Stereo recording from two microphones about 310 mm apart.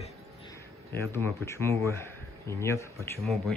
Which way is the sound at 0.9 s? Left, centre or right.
Centre.